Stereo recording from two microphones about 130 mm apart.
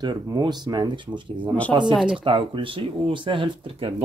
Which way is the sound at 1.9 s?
Centre (ahead or behind).